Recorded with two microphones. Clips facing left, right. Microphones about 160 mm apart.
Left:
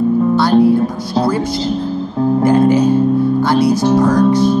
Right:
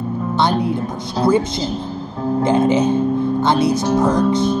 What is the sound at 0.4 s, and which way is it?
Music, 20° right (ahead or behind).